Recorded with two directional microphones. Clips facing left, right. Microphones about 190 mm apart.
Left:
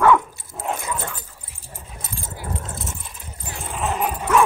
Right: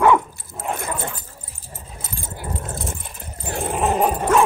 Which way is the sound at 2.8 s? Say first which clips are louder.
Right 4 dB; 55° right (ahead or behind).